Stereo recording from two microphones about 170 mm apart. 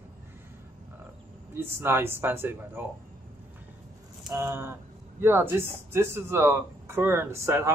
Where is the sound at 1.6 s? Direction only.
10° right (ahead or behind).